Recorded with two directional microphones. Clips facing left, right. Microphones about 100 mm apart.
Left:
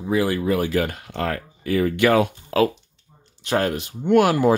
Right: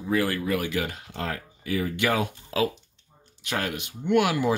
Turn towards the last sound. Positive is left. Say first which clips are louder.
# left 6 dB
turn(degrees=45)  # may be behind; listen again after turning